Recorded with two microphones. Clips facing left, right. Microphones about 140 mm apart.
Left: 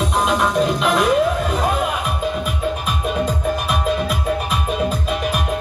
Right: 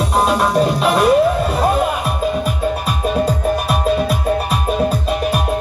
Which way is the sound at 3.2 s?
40° right (ahead or behind).